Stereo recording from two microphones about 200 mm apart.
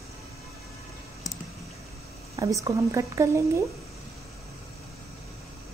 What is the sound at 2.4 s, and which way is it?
Speech, 15° right (ahead or behind).